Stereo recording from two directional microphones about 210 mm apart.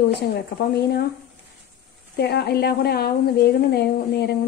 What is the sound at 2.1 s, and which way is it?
A woman's voice, 50° left (ahead or behind).